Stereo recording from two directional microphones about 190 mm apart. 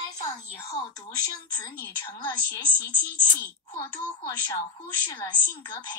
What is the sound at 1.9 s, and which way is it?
A woman's voice, 15° left (ahead or behind).